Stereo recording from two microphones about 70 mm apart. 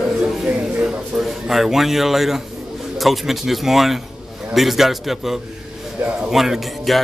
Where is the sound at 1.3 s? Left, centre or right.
Centre.